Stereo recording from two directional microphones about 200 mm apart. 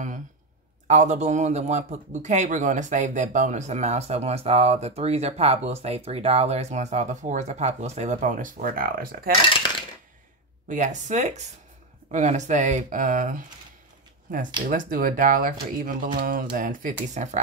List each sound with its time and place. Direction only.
0.8 s speech: 35° right (ahead or behind)
10.7 s speech: 40° right (ahead or behind)